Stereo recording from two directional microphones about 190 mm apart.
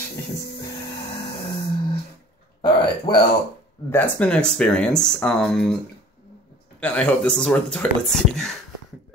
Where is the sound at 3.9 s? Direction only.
10° left (ahead or behind).